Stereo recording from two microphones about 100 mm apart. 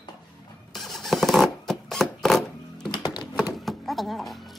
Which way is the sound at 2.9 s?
45° left (ahead or behind).